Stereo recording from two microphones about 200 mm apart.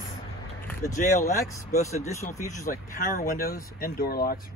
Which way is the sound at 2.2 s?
40° left (ahead or behind).